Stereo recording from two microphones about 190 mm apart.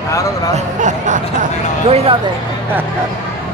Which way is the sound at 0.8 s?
40° right (ahead or behind).